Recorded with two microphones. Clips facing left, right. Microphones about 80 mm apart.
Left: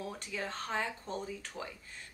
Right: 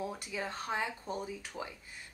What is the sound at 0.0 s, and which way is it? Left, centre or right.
A woman's voice, centre.